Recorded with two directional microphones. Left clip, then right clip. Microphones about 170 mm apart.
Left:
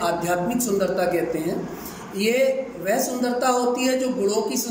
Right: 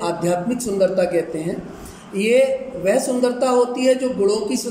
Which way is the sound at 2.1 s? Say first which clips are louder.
Right 4 dB; 30° right (ahead or behind).